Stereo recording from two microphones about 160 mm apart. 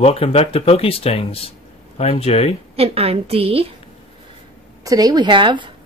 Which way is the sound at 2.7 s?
40° right (ahead or behind).